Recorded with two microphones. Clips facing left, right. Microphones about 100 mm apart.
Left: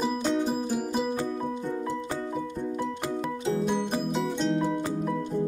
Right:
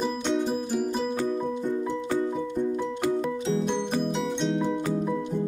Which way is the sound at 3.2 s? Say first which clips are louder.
Right 2 dB; 5° left (ahead or behind).